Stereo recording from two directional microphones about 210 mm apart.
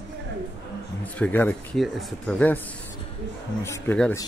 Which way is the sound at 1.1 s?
10° left (ahead or behind).